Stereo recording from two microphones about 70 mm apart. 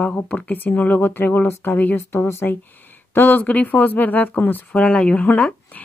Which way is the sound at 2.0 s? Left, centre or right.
Left.